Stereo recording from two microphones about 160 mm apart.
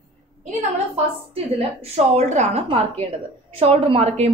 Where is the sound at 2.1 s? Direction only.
45° right (ahead or behind).